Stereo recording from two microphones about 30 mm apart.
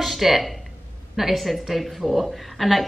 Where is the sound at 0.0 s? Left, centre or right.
Centre.